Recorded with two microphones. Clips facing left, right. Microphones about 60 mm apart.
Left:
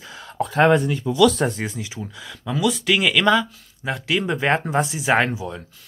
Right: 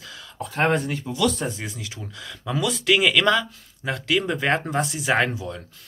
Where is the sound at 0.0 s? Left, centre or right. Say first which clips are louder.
Left 3 dB; left.